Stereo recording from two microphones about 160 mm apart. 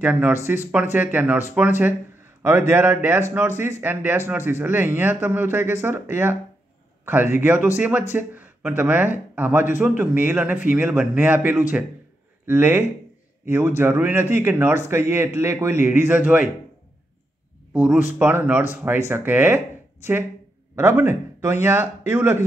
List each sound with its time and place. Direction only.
0.0 s speech: 10° right (ahead or behind)
2.7 s speech: 10° right (ahead or behind)
18.2 s speech: 10° right (ahead or behind)
20.7 s a man's voice: 15° right (ahead or behind)